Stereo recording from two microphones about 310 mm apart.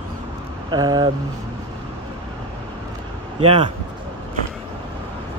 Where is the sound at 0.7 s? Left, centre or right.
Centre.